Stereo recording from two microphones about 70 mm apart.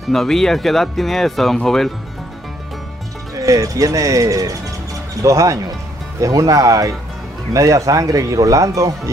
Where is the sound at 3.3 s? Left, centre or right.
Right.